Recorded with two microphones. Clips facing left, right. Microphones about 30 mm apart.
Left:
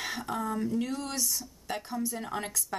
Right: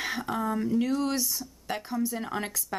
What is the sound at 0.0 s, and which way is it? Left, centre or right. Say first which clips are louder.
Speech: right 3 dB; centre.